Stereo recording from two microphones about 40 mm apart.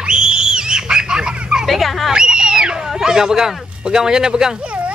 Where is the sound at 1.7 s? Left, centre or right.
Centre.